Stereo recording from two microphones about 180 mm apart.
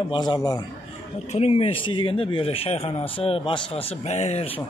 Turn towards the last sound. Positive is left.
turn(degrees=30)  # may be behind; listen again after turning